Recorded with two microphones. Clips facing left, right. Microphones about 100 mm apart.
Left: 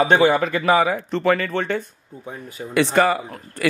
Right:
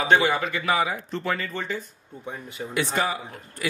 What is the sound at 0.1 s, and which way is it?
Speech, 45° left (ahead or behind).